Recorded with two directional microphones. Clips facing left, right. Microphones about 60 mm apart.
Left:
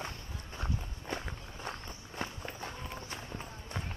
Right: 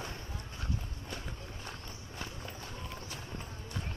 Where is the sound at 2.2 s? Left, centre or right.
Left.